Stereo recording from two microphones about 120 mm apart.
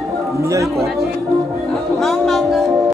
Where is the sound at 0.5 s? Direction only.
25° right (ahead or behind).